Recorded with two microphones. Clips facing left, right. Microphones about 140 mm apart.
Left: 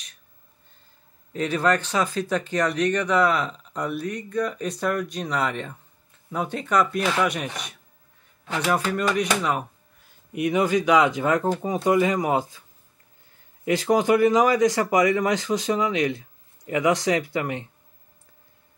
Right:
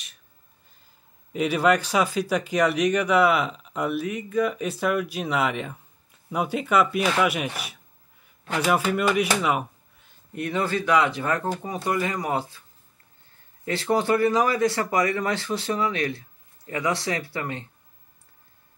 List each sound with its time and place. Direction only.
1.3 s speech: 10° right (ahead or behind)
10.3 s speech: 15° left (ahead or behind)
13.7 s speech: 15° left (ahead or behind)